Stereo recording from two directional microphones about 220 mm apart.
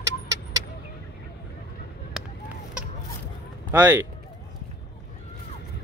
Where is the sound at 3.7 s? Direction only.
10° right (ahead or behind).